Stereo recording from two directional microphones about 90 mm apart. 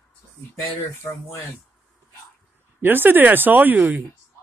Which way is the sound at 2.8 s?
20° right (ahead or behind).